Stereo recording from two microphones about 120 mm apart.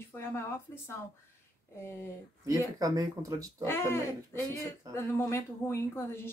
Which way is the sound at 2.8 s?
30° right (ahead or behind).